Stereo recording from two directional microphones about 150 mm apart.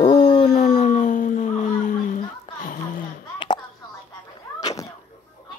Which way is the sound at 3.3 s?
30° left (ahead or behind).